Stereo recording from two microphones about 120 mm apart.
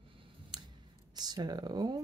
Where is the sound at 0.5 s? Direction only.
40° right (ahead or behind).